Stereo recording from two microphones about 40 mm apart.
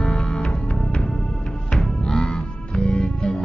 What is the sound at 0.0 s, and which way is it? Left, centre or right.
Music, centre.